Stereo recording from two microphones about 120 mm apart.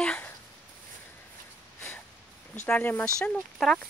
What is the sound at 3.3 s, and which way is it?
Speech, 5° left (ahead or behind).